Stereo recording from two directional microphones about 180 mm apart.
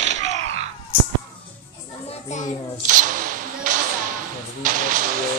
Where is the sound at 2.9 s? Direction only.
45° right (ahead or behind).